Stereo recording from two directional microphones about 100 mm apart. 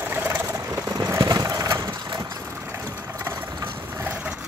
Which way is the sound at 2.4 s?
25° right (ahead or behind).